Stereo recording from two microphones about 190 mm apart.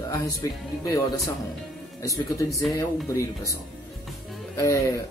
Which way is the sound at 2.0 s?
15° left (ahead or behind).